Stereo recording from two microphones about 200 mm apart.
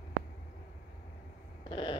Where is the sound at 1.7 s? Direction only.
25° left (ahead or behind).